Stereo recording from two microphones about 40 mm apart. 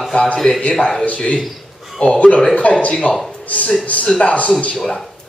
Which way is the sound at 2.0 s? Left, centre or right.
Left.